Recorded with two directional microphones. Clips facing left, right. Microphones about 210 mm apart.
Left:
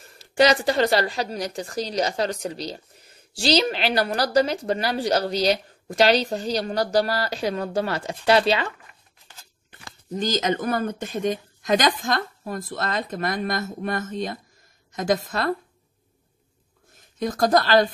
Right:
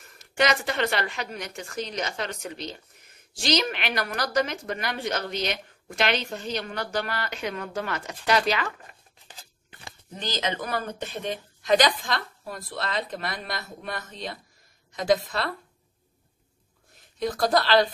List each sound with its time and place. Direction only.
0.0 s speech: 30° left (ahead or behind)
10.1 s speech: 45° left (ahead or behind)
17.2 s speech: 45° left (ahead or behind)